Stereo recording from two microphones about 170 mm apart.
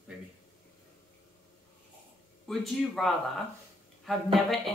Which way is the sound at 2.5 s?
Centre (ahead or behind).